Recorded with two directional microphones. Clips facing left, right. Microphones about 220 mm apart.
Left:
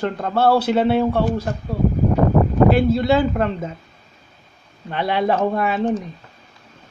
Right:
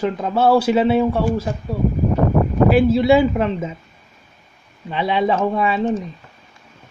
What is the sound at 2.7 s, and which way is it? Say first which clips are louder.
Speech: right 3 dB; 5° right (ahead or behind).